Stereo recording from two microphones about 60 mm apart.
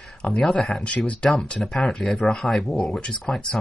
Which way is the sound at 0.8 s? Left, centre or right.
Left.